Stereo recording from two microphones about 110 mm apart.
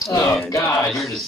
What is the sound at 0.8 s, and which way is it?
Speech, centre (ahead or behind).